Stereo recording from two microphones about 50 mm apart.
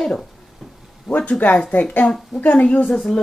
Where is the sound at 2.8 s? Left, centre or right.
Centre.